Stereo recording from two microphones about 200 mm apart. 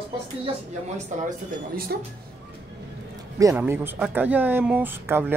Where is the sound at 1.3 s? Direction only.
45° right (ahead or behind).